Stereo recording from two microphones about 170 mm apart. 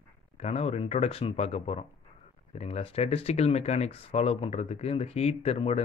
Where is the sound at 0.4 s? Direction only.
40° left (ahead or behind).